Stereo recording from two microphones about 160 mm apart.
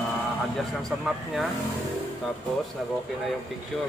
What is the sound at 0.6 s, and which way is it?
Speech, centre (ahead or behind).